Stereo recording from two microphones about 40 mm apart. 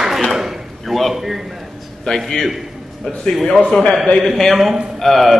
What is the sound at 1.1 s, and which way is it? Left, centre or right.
Speech, centre.